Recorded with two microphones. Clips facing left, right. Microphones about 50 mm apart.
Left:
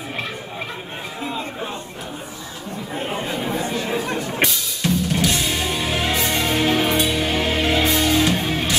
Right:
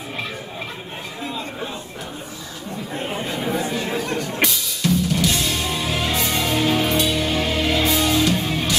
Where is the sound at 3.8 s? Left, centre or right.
Centre.